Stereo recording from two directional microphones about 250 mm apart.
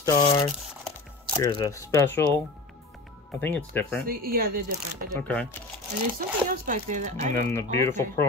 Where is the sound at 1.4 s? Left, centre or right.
Centre.